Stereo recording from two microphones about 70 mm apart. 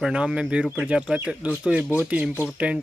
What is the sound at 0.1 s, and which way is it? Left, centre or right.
Speech, centre.